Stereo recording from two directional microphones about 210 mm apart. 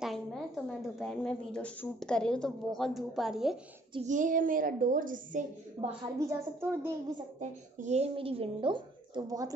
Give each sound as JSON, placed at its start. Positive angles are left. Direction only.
{"t": 0.0, "sound": "a woman's voice", "side_deg": 0}
{"t": 3.9, "sound": "a woman's voice", "side_deg": -35}
{"t": 6.1, "sound": "a woman's voice", "side_deg": -15}
{"t": 7.3, "sound": "a woman's voice", "side_deg": -35}